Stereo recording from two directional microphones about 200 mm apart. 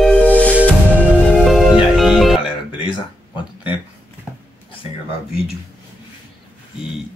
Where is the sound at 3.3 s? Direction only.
25° left (ahead or behind).